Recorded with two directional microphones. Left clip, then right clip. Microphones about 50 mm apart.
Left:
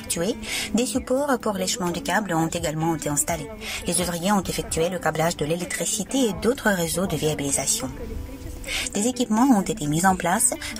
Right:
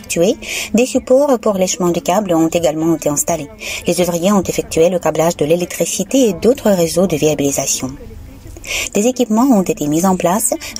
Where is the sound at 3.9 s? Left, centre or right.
Right.